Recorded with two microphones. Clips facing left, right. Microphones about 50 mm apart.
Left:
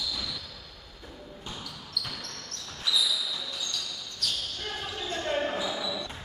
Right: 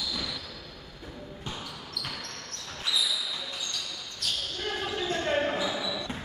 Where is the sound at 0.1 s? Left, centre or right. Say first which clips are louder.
Right 1 dB; right.